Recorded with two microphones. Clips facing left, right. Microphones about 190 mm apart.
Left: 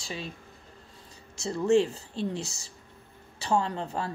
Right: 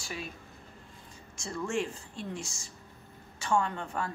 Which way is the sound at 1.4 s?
35° left (ahead or behind).